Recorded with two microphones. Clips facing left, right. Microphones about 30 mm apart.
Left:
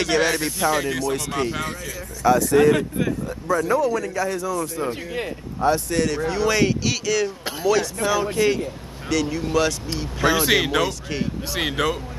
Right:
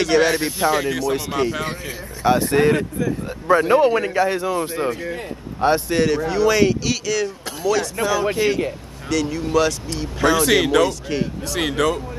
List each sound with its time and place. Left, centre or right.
0.0 s speech: centre
2.2 s a man's voice: right
5.9 s speech: centre
6.1 s speech: centre
11.4 s speech: centre